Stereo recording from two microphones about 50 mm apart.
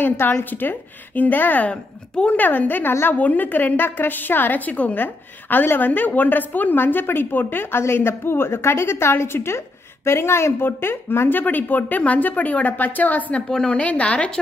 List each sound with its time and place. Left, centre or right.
0.0 s a woman's voice: left
1.7 s speech: left
2.3 s a woman's voice: left
2.9 s a woman's voice: left
3.2 s a woman's voice: left
7.8 s a woman's voice: left
13.5 s a woman's voice: centre
13.7 s speech: left